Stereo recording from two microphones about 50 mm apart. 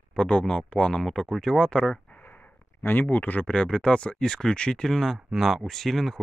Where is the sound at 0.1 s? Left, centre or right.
Centre.